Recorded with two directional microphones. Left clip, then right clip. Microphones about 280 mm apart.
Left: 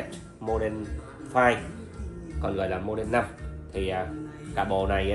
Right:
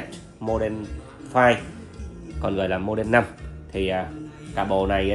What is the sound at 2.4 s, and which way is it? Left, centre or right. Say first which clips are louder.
Speech: right 4 dB; right.